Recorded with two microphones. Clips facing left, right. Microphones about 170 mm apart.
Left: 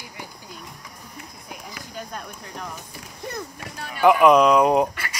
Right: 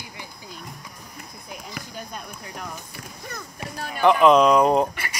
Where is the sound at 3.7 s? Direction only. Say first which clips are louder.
Right 3 dB; 40° right (ahead or behind).